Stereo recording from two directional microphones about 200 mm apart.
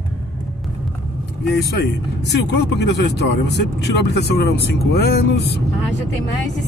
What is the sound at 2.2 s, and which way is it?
Speech, 60° left (ahead or behind).